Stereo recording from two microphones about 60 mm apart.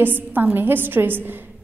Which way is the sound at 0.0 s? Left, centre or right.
Right.